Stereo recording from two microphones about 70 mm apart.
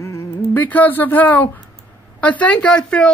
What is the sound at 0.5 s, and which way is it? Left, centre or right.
Speech, left.